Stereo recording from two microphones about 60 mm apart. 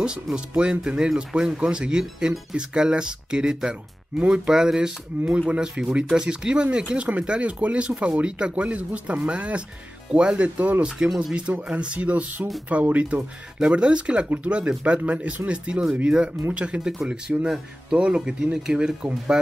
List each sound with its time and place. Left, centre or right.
0.0 s speech: centre